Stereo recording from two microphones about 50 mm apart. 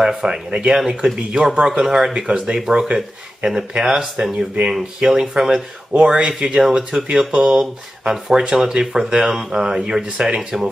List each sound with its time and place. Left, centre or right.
0.0 s speech: centre
5.9 s speech: right